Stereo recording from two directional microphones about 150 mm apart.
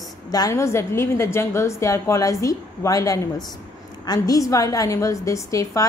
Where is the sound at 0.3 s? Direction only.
25° left (ahead or behind).